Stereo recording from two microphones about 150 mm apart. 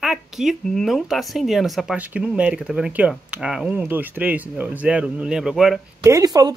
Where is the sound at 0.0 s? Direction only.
Centre (ahead or behind).